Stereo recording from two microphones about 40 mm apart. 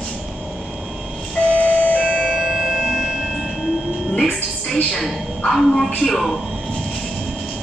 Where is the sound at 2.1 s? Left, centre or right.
Left.